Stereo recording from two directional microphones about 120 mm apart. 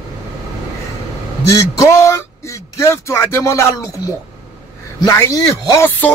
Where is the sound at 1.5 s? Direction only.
25° left (ahead or behind).